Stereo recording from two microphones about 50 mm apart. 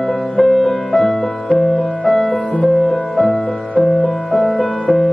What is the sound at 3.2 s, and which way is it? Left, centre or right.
Music, left.